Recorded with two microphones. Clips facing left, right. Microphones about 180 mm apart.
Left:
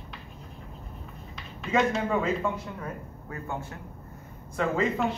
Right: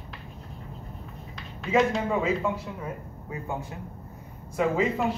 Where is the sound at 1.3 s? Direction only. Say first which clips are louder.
Right 2 dB; centre (ahead or behind); by 3.7 s 15° right (ahead or behind).